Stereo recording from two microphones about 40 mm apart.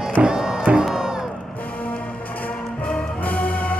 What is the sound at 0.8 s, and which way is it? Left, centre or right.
Crowd, centre.